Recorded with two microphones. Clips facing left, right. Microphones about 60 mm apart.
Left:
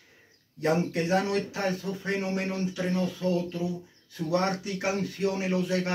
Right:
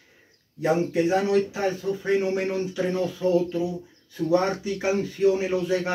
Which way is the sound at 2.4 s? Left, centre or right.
Centre.